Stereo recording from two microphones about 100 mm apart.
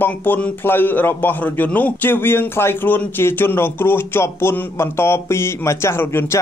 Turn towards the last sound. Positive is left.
turn(degrees=25)  # may be behind; listen again after turning